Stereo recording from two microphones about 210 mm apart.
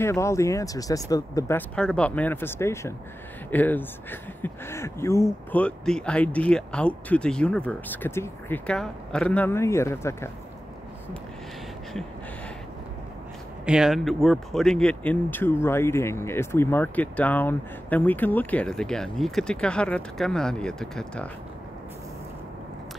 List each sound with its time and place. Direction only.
0.0 s speech: 15° left (ahead or behind)
1.8 s speech: 5° left (ahead or behind)
13.7 s speech: centre (ahead or behind)